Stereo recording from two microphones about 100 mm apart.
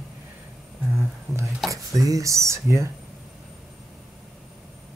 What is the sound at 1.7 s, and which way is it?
Speech, 35° right (ahead or behind).